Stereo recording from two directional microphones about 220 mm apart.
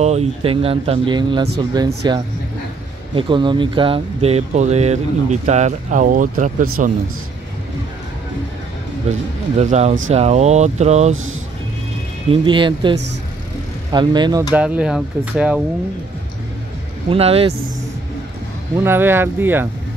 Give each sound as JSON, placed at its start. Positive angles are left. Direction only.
{"t": 0.0, "sound": "speech", "side_deg": -30}
{"t": 9.1, "sound": "speech", "side_deg": -30}
{"t": 12.3, "sound": "speech", "side_deg": -20}
{"t": 13.9, "sound": "speech", "side_deg": -20}
{"t": 14.5, "sound": "speech", "side_deg": -5}
{"t": 17.1, "sound": "speech", "side_deg": -25}
{"t": 18.9, "sound": "speech", "side_deg": -10}